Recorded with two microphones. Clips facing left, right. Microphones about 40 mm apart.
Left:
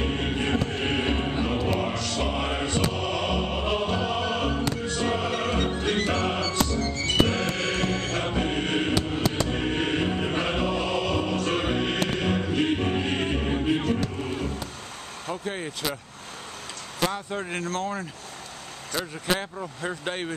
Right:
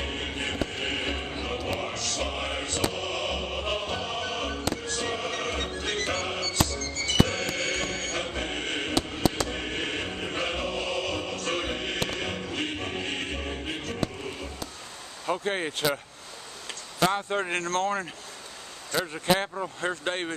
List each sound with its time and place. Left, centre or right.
0.0 s music: centre
15.4 s speech: right
17.6 s speech: centre
18.9 s speech: centre
20.1 s speech: centre